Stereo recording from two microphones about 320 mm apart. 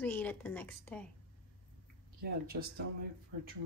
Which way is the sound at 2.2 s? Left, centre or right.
Right.